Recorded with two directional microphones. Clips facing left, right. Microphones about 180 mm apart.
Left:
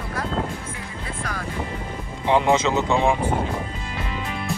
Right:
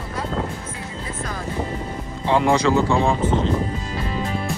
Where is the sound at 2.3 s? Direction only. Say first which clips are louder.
Right 1 dB; 20° left (ahead or behind).